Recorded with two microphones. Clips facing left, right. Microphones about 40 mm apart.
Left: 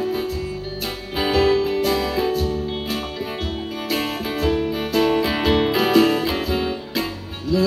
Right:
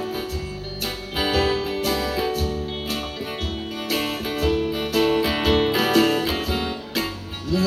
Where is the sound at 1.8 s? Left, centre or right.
Left.